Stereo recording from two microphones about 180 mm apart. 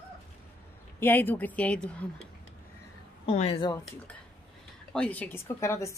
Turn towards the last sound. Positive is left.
turn(degrees=15)  # may be behind; listen again after turning